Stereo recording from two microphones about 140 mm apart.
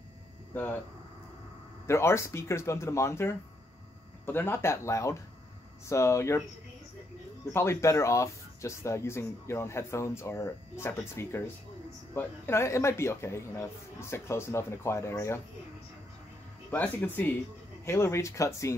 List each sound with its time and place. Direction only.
1.9 s speech: 20° left (ahead or behind)
7.5 s speech: 20° left (ahead or behind)
16.7 s speech: 10° left (ahead or behind)